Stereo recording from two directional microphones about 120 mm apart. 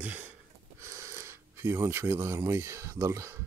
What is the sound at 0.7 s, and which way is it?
Speech, 25° right (ahead or behind).